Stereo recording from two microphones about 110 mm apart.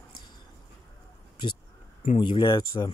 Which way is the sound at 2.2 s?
45° left (ahead or behind).